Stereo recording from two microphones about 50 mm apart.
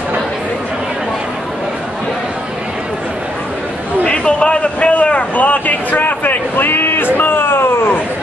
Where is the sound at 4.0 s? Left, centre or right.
Left.